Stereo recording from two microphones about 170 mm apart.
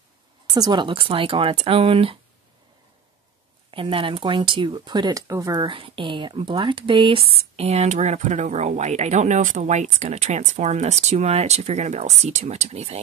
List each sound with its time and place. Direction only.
0.6 s speech: 25° right (ahead or behind)
3.7 s speech: 30° right (ahead or behind)